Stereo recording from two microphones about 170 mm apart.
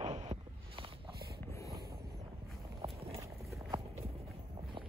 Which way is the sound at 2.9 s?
35° right (ahead or behind).